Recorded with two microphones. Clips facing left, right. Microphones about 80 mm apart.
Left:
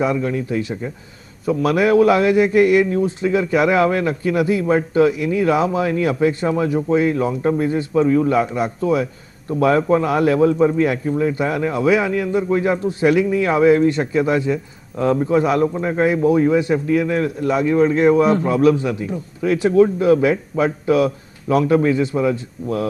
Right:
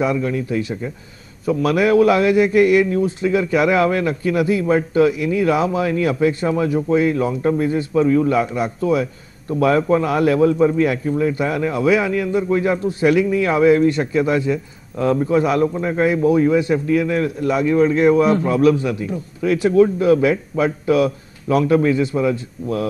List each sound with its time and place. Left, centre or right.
0.0 s a man's voice: left